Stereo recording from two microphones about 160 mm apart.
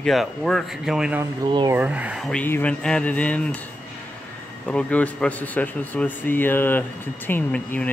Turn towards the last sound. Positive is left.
turn(degrees=10)  # may be behind; listen again after turning